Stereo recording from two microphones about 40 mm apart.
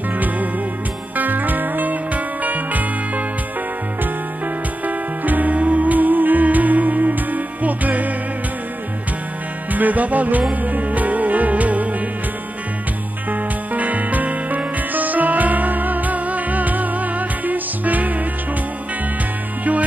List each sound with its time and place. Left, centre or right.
1.1 s music: right
4.8 s music: right
9.7 s music: right
13.3 s music: right